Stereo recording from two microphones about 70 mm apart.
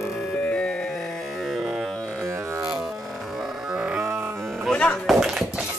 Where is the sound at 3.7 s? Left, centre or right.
Centre.